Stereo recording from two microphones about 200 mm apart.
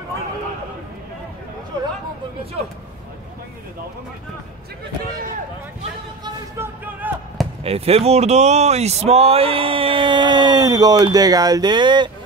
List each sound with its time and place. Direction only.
5.1 s speech: 40° right (ahead or behind)
6.2 s basketball bounce: 10° right (ahead or behind)
7.6 s speech: 30° right (ahead or behind)